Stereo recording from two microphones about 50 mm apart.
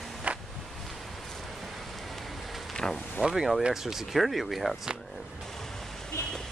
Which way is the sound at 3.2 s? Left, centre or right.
Centre.